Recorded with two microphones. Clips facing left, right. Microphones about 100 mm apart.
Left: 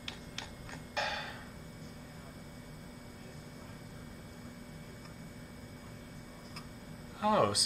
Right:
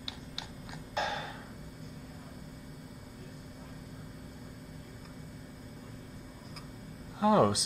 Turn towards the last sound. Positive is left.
turn(degrees=-25)  # may be behind; listen again after turning